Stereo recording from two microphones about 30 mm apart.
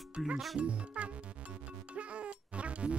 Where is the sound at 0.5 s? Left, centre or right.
Right.